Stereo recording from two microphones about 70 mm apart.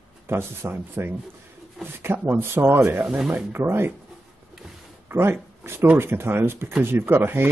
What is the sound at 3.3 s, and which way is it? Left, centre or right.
Speech, right.